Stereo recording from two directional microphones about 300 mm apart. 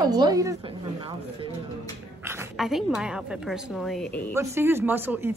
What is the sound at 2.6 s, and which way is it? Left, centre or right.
A woman's voice, centre.